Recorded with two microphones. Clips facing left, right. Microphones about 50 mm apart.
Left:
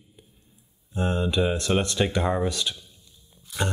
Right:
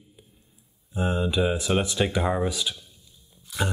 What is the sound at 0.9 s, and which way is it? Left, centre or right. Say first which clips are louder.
Speech: even; centre.